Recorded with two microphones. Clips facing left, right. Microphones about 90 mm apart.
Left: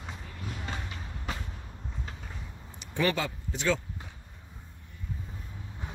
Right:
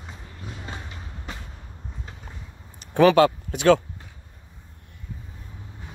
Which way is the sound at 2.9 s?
80° right.